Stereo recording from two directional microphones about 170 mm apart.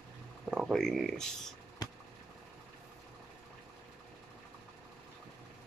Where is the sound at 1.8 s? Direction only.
25° left (ahead or behind).